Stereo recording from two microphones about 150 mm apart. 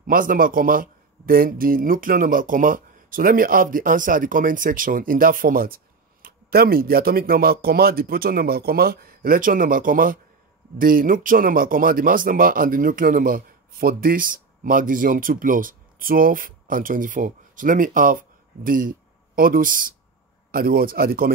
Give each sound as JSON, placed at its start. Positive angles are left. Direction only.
{"t": 0.0, "sound": "speech", "side_deg": -70}
{"t": 6.2, "sound": "speech", "side_deg": -90}
{"t": 20.5, "sound": "speech", "side_deg": -80}